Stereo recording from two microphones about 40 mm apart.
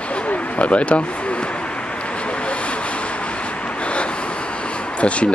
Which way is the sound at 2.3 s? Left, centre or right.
Left.